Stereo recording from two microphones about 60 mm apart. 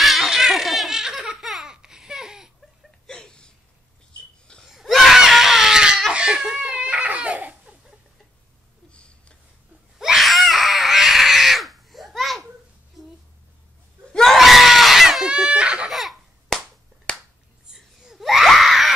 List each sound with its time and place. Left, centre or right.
0.0 s laughter: centre
3.1 s a sound: centre
4.6 s screaming: centre
6.1 s giggle: centre
6.5 s crying: centre
8.9 s a sound: centre
9.9 s screaming: centre
14.1 s screaming: centre
15.2 s chicken: centre
15.9 s baby laughter: centre
17.1 s finger snapping: centre
17.6 s a sound: centre